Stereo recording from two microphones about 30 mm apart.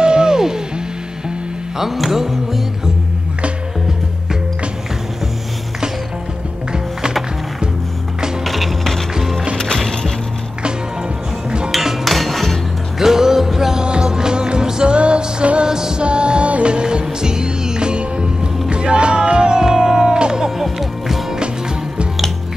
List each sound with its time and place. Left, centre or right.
0.0 s music: right
2.0 s music: centre
8.5 s music: centre
11.8 s hammer: centre
13.0 s music: centre
14.0 s music: right
15.6 s music: right
16.0 s music: right
19.6 s music: centre
20.5 s music: centre